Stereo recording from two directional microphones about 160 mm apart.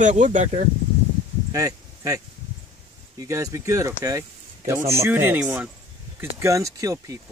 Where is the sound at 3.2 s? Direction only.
20° right (ahead or behind).